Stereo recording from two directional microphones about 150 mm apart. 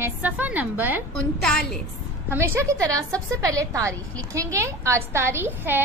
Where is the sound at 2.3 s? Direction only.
20° right (ahead or behind).